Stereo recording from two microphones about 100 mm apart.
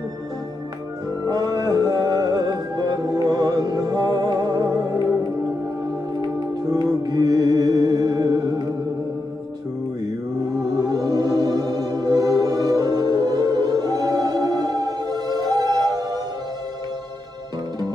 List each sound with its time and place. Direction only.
1.2 s music: 40° right (ahead or behind)
6.7 s music: 40° right (ahead or behind)
10.8 s music: 40° right (ahead or behind)